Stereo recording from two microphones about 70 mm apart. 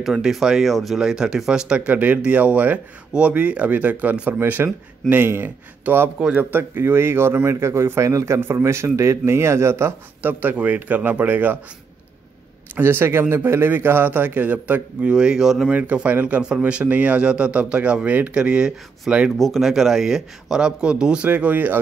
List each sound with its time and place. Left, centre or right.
0.0 s a man's voice: centre
2.0 s speech: right
6.5 s a man's voice: right
8.4 s a man's voice: right
10.2 s speech: right
12.7 s a man's voice: right; by 15.7 s centre
15.7 s a man's voice: right
19.3 s a man's voice: centre; by 21.7 s right